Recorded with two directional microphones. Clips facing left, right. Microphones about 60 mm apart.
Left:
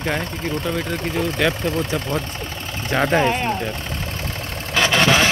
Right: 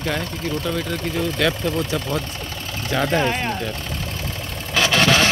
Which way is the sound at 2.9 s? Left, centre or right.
Left.